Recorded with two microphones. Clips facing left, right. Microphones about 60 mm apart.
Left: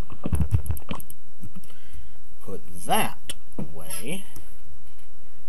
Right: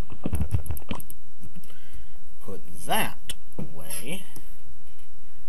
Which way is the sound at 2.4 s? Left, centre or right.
Centre.